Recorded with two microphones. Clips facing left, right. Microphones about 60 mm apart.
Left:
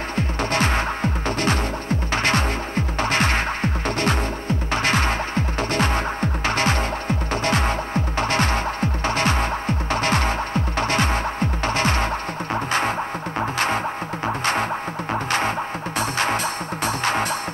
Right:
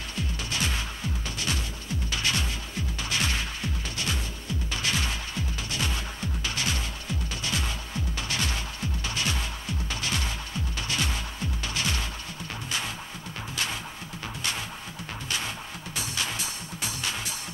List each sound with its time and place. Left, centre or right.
0.1 s music: left
13.4 s music: left
16.0 s music: left